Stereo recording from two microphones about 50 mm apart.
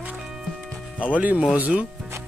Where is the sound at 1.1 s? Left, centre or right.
Right.